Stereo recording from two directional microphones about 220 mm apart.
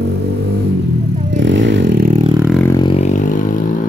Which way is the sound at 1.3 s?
55° right (ahead or behind).